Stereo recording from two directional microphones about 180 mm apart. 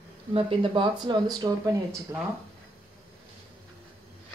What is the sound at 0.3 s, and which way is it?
Speech, 30° right (ahead or behind).